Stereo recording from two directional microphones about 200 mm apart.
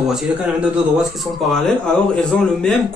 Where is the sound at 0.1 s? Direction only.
5° right (ahead or behind).